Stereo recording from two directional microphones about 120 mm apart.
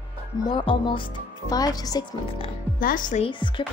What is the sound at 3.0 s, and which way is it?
Speech, 90° left.